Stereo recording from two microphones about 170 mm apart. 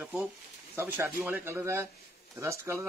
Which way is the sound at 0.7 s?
10° right (ahead or behind).